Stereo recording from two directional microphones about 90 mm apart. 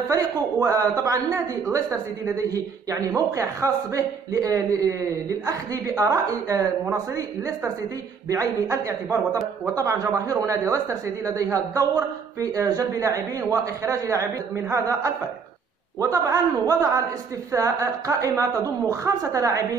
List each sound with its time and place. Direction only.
0.1 s a woman's voice: 35° right (ahead or behind)
16.0 s a woman's voice: 35° right (ahead or behind)